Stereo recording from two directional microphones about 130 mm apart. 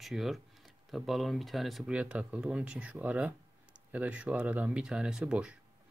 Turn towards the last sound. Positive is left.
turn(degrees=-10)  # may be behind; listen again after turning